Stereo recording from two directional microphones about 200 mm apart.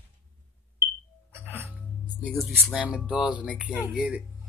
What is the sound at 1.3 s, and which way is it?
Music, 10° right (ahead or behind).